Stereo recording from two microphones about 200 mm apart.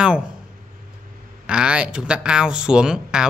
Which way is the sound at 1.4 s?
5° right (ahead or behind).